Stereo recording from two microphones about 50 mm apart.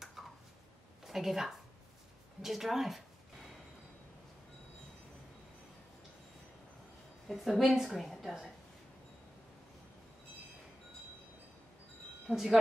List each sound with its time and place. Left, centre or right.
0.0 s a sound: centre
1.0 s a woman's voice: centre
7.2 s a woman's voice: centre
12.3 s a woman's voice: centre